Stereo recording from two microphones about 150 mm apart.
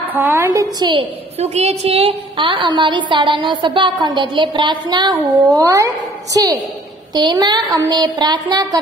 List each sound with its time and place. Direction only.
0.1 s a woman's voice: 15° right (ahead or behind)
1.4 s a woman's voice: 45° right (ahead or behind); by 8.6 s 25° right (ahead or behind)